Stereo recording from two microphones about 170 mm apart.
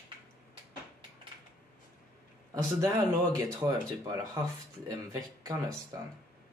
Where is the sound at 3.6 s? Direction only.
20° right (ahead or behind).